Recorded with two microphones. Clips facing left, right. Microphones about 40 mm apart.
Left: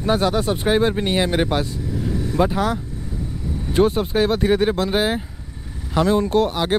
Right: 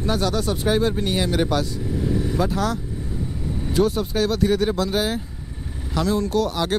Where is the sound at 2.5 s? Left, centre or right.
Centre.